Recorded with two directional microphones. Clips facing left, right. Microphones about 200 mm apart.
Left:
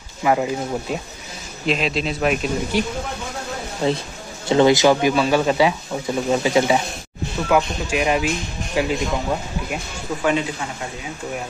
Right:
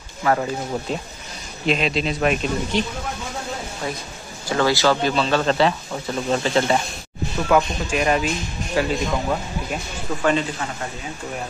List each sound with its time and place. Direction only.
0.2 s speech: 15° left (ahead or behind)
1.7 s speech: centre (ahead or behind)
3.8 s speech: 25° left (ahead or behind)